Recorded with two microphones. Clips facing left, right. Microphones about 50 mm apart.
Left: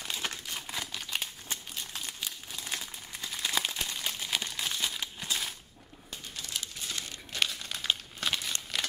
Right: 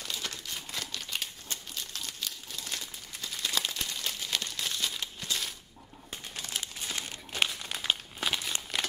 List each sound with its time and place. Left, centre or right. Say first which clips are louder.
0.0 s a sound: left 2 dB; left
0.7 s crumpling: left 1 dB; centre
6.5 s crumpling: right 1 dB; right; by 8.5 s centre